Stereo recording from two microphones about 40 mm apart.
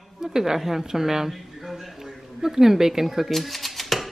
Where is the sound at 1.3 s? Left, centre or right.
Centre.